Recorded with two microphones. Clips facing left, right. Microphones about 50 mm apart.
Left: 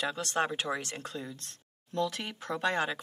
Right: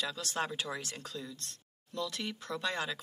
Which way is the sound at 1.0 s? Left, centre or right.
Left.